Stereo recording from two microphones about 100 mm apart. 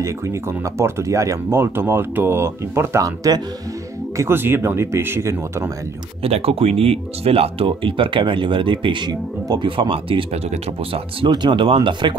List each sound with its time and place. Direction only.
0.0 s speech: 30° right (ahead or behind)
4.2 s speech: 25° right (ahead or behind)
6.2 s speech: 80° right; by 10.2 s 60° right (ahead or behind)
11.1 s speech: 50° right (ahead or behind)